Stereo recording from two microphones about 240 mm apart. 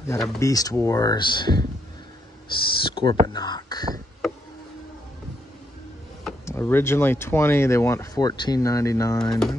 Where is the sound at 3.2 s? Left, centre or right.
Centre.